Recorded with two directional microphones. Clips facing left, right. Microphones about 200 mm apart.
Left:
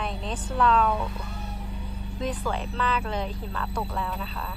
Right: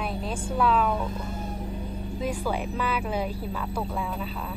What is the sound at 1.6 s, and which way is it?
Vehicle, 50° right (ahead or behind).